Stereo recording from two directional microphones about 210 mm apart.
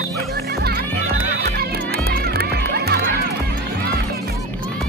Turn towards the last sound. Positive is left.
turn(degrees=-50)  # may be behind; listen again after turning